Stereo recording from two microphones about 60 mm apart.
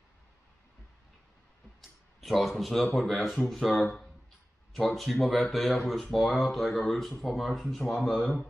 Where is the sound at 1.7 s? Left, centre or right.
Centre.